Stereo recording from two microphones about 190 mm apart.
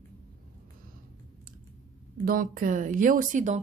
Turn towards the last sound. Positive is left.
turn(degrees=-40)  # may be behind; listen again after turning